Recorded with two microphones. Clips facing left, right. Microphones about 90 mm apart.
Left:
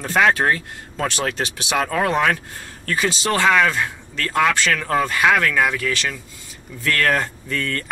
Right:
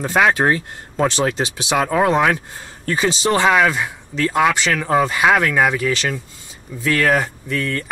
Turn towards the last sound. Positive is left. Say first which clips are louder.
# right 2 dB
turn(degrees=-5)  # may be behind; listen again after turning